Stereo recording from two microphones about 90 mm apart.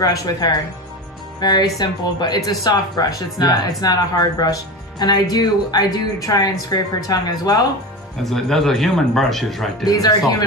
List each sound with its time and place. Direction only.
0.0 s speech: 45° left (ahead or behind)
8.2 s speech: 5° left (ahead or behind)